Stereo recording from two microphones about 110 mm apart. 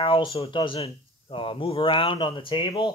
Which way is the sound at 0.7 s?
60° left (ahead or behind).